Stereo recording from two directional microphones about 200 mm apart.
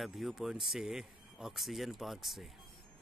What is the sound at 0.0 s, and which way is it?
Speech, centre (ahead or behind).